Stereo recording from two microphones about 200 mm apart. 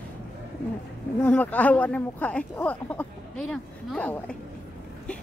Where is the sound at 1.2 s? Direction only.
5° left (ahead or behind).